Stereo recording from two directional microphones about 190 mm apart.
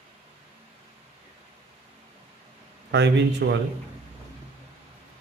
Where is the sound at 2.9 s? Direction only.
65° right (ahead or behind).